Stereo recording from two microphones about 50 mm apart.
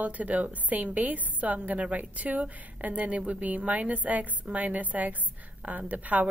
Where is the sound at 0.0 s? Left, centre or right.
Right.